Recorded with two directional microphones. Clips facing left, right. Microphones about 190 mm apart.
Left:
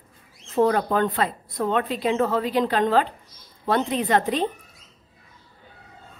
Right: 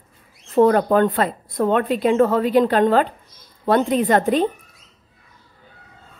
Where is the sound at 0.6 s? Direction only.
50° right (ahead or behind).